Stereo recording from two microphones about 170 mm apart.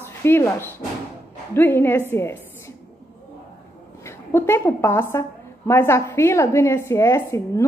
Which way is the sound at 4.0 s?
15° left (ahead or behind).